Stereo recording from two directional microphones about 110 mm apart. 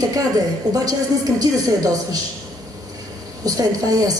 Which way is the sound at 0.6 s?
35° right (ahead or behind).